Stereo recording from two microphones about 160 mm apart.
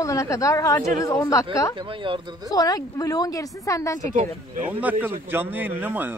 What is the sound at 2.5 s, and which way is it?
Speech, 25° left (ahead or behind).